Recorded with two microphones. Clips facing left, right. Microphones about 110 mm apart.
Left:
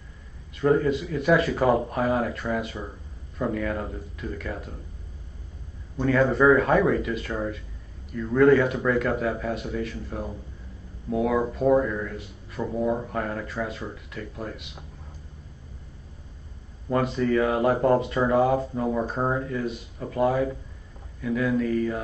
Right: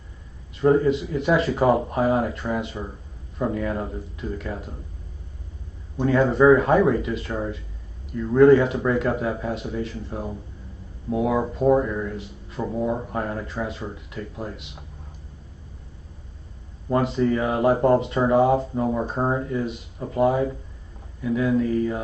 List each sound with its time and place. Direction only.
0.6 s speech: 25° right (ahead or behind)
5.9 s speech: 25° right (ahead or behind)
16.9 s speech: 25° right (ahead or behind)